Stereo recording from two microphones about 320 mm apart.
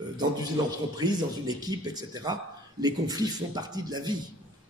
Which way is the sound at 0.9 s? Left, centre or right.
Centre.